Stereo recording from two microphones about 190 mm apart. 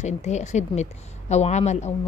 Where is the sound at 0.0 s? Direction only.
35° left (ahead or behind).